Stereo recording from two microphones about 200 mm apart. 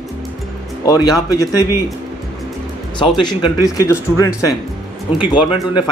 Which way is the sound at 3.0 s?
20° left (ahead or behind).